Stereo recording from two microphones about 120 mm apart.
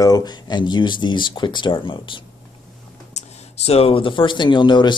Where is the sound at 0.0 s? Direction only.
35° left (ahead or behind).